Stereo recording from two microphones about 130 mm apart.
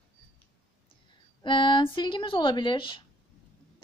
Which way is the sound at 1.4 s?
40° left (ahead or behind).